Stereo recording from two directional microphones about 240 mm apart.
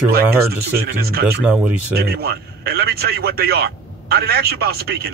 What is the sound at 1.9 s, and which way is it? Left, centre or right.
A man's voice, right.